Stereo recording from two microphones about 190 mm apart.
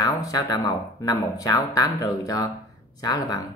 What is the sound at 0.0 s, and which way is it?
Speech, 20° left (ahead or behind).